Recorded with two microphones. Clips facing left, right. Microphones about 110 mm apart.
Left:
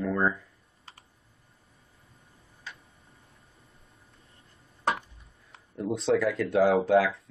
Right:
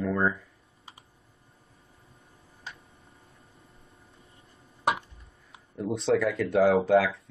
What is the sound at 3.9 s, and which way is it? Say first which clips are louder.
Vehicle: right 3 dB; 30° right (ahead or behind).